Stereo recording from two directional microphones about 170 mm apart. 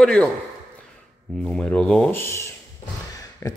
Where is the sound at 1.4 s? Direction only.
5° left (ahead or behind).